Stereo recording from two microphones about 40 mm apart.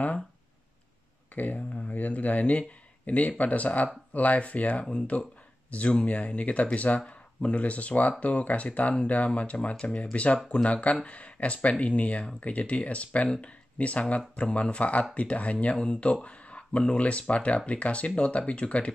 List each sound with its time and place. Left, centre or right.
1.3 s speech: left
1.7 s a sound: left
2.0 s speech: left